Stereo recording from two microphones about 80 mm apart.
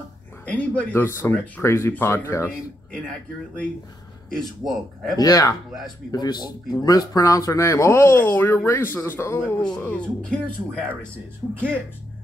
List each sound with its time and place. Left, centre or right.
0.5 s speech: centre
0.9 s speech: left
4.3 s speech: centre
5.2 s speech: left
6.1 s speech: left
9.8 s speech: centre
11.4 s speech: centre